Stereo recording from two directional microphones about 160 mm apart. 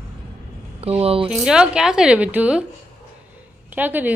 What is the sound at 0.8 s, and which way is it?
Speech, 40° right (ahead or behind).